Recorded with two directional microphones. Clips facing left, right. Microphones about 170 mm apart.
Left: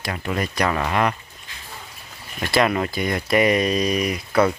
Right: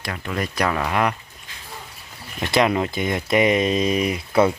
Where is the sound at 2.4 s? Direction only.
20° right (ahead or behind).